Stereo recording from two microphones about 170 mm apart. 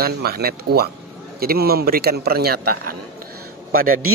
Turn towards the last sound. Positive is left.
turn(degrees=-60)  # may be behind; listen again after turning